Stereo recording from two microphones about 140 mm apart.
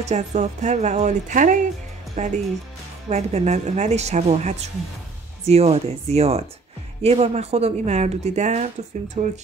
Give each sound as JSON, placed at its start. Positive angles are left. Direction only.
{"t": 0.0, "sound": "a woman's voice", "side_deg": -55}